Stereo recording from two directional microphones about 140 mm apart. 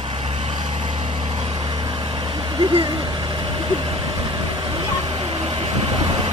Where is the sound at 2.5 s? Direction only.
35° right (ahead or behind).